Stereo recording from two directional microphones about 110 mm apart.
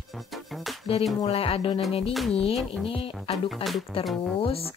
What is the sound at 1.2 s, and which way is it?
Speech, 60° left (ahead or behind).